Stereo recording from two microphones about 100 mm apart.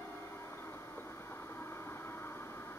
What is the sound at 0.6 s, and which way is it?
Vehicle, 25° left (ahead or behind).